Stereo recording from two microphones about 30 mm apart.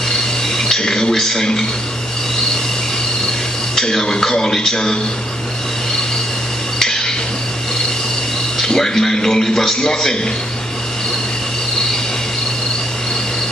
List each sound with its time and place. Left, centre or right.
0.1 s a sound: centre
1.1 s speech: centre
4.0 s speech: left
8.5 s speech: centre